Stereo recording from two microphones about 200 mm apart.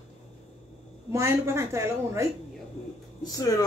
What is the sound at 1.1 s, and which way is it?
A woman's voice, 15° right (ahead or behind).